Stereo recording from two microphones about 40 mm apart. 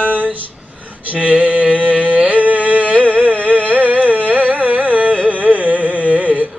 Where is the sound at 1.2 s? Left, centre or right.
Right.